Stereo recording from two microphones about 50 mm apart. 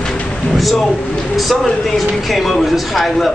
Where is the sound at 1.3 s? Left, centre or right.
Centre.